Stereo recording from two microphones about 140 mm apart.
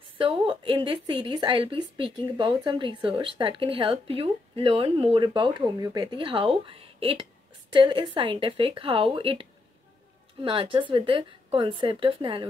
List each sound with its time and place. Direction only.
0.2 s a woman's voice: 40° right (ahead or behind)